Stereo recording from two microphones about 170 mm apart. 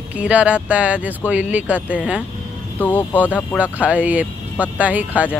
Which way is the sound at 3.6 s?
10° right (ahead or behind).